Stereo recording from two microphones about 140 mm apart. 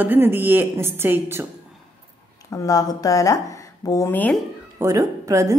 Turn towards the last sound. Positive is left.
turn(degrees=-25)  # may be behind; listen again after turning